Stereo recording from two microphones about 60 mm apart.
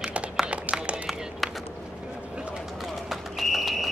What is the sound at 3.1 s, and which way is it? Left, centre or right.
Clip-clop, centre.